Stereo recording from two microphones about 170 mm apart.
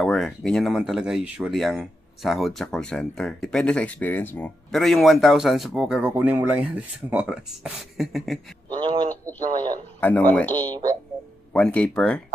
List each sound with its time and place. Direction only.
0.0 s speech: 5° left (ahead or behind)
8.6 s a sound: 30° right (ahead or behind)
9.2 s speech: 25° right (ahead or behind)
9.9 s speech: 10° left (ahead or behind)
10.7 s speech: 20° right (ahead or behind)
11.5 s speech: 5° left (ahead or behind)